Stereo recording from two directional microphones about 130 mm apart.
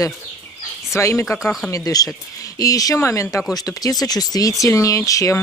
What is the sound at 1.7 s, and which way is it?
Speech, 25° left (ahead or behind).